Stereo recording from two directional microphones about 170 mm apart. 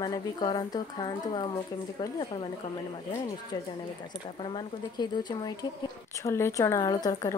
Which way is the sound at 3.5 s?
20° left (ahead or behind).